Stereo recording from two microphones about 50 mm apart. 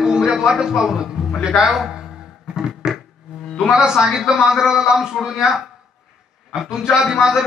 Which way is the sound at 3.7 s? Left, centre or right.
Centre.